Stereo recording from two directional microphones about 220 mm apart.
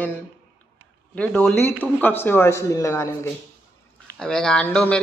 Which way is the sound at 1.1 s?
5° left (ahead or behind).